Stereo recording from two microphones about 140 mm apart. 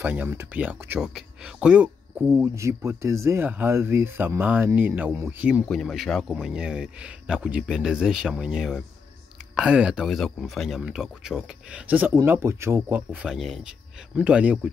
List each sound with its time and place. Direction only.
0.0 s speech: 10° right (ahead or behind)
2.4 s speech: 20° right (ahead or behind)
5.7 s speech: centre (ahead or behind)